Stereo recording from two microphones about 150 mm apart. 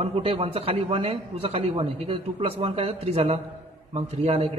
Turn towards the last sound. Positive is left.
turn(degrees=-45)  # may be behind; listen again after turning